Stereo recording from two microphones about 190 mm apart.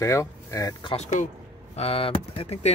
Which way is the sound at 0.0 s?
15° left (ahead or behind).